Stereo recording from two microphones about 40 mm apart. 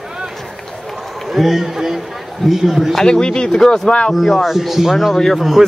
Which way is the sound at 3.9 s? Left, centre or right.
Left.